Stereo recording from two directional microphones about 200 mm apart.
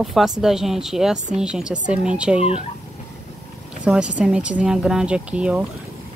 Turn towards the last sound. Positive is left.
turn(degrees=-5)  # may be behind; listen again after turning